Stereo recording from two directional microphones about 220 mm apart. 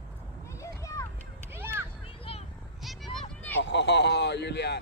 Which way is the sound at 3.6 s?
55° left (ahead or behind).